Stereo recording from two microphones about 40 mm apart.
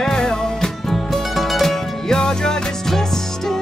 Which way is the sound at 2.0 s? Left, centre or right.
Centre.